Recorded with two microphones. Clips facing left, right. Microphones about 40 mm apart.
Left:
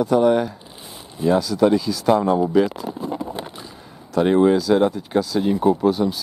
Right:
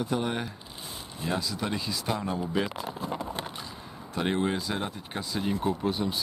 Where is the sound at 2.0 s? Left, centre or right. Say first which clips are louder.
Left 15 dB; left.